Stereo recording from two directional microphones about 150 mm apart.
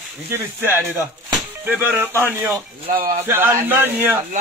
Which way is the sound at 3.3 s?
15° right (ahead or behind).